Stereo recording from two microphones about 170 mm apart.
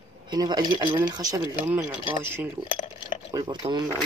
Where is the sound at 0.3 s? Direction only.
25° right (ahead or behind).